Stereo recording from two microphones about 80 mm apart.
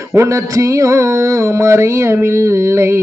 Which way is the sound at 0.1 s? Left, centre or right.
Right.